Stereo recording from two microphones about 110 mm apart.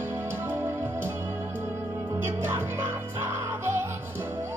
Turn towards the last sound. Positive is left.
turn(degrees=-20)  # may be behind; listen again after turning